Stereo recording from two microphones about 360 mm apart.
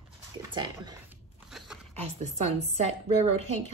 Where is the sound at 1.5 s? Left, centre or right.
Centre.